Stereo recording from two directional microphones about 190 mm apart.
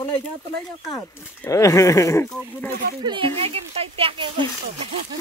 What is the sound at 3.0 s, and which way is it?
Speech, 25° right (ahead or behind).